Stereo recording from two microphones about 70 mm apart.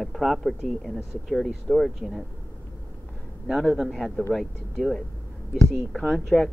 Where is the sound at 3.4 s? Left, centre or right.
Centre.